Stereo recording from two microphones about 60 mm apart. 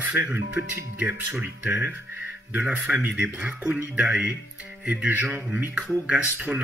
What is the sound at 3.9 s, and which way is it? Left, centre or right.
Speech, centre.